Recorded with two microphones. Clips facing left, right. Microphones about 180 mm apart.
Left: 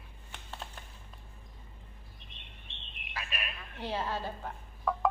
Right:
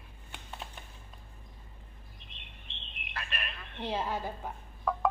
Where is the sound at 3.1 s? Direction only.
5° left (ahead or behind).